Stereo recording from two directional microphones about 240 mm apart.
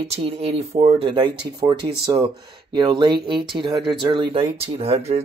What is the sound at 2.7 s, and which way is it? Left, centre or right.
Speech, centre.